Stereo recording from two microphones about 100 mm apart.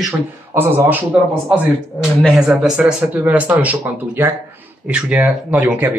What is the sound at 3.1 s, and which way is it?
Speech, 15° right (ahead or behind).